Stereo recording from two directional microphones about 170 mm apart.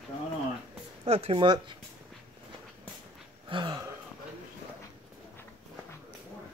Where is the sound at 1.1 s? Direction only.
35° right (ahead or behind).